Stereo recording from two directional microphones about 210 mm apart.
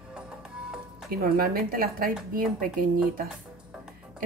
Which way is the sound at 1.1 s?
45° right (ahead or behind).